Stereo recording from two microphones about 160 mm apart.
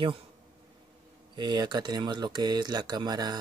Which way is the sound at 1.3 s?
30° right (ahead or behind).